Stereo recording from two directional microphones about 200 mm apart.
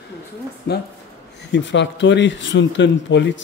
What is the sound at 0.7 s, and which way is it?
Speech, 55° left (ahead or behind).